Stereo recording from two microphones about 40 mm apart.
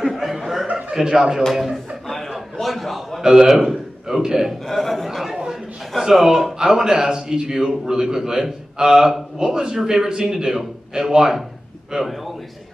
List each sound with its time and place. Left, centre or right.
0.1 s chuckle: centre
0.7 s chuckle: right
0.9 s a man's voice: centre
1.5 s speech: centre
2.0 s a sound: centre
3.3 s a man's voice: centre
4.6 s a man's voice: centre
5.4 s a sound: centre
6.6 s a man's voice: centre
12.0 s a man's voice: centre